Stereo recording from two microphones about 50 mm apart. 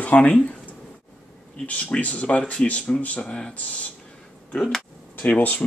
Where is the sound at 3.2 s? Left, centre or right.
Centre.